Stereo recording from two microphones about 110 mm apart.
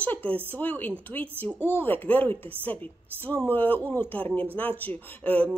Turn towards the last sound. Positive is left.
turn(degrees=15)  # may be behind; listen again after turning